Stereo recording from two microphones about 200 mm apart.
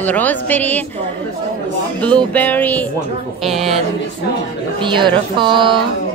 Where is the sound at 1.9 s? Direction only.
5° left (ahead or behind).